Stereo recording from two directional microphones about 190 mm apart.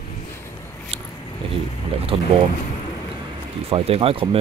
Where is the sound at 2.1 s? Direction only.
30° right (ahead or behind).